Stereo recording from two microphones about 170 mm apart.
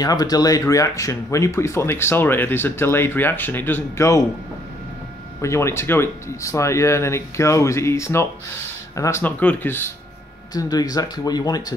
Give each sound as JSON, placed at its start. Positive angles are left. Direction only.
{"t": 0.0, "sound": "speech", "side_deg": 20}
{"t": 5.4, "sound": "speech", "side_deg": 15}